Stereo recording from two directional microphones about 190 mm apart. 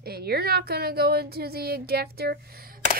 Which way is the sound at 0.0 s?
55° right (ahead or behind).